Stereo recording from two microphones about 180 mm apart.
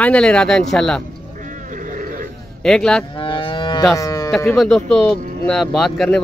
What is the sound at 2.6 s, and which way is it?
Speech, 5° left (ahead or behind).